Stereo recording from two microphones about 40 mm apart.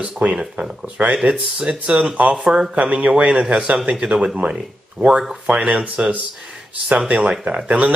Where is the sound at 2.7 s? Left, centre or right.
Right.